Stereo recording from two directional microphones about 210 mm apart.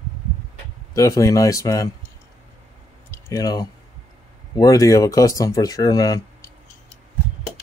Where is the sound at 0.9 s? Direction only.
15° left (ahead or behind).